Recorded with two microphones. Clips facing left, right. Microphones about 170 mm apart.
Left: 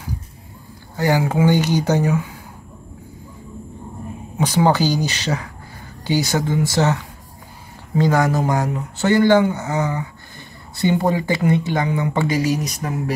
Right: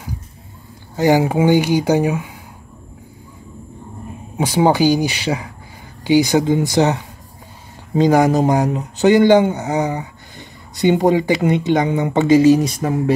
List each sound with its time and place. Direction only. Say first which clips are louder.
0.9 s speech: right 4 dB; 20° right (ahead or behind)
4.4 s speech: right 3 dB; 15° right (ahead or behind); by 13.1 s 30° right (ahead or behind)